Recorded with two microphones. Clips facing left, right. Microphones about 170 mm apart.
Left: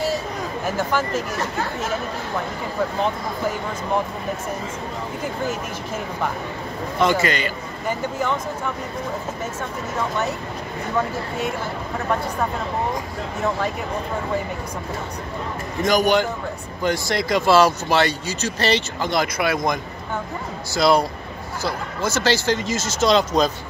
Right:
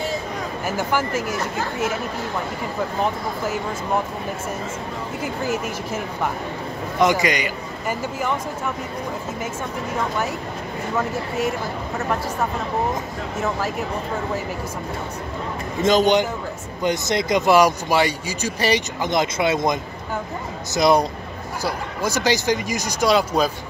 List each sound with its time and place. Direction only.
5.2 s speech: 5° right (ahead or behind)
7.0 s speech: 15° right (ahead or behind)
15.8 s speech: 20° right (ahead or behind)